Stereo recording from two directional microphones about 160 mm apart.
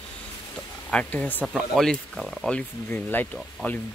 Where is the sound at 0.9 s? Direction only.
10° left (ahead or behind).